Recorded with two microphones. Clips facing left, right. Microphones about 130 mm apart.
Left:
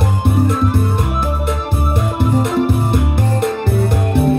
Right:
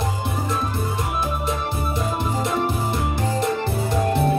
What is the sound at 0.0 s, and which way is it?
Music, 60° left (ahead or behind).